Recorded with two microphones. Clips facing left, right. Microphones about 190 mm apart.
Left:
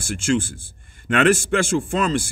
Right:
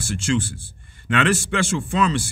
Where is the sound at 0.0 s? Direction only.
50° left (ahead or behind).